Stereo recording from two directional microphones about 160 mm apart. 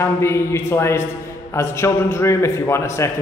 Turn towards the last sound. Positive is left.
turn(degrees=15)  # may be behind; listen again after turning